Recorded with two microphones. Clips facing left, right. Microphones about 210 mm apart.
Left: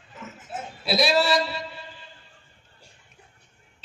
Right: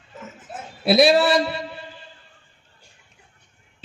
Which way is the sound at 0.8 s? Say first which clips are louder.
Right 7 dB; 55° right (ahead or behind).